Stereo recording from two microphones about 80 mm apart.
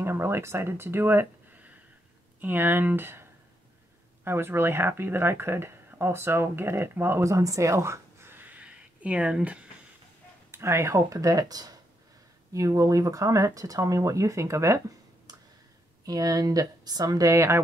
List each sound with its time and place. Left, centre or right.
0.0 s speech: right
7.2 s a sound: right; by 9.7 s centre
10.5 s speech: right
11.1 s speech: right
12.5 s speech: right
16.1 s speech: right